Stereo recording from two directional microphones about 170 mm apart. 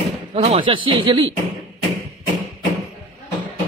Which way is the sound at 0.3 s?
40° right (ahead or behind).